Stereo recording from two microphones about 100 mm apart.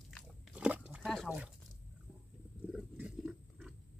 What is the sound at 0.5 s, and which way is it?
Pig, 10° right (ahead or behind).